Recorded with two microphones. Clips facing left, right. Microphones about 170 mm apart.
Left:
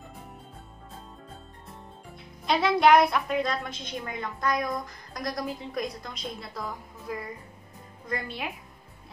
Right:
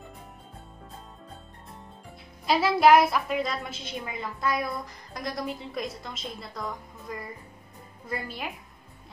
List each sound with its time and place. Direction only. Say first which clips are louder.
2.4 s a woman's voice: right 1 dB; 5° right (ahead or behind)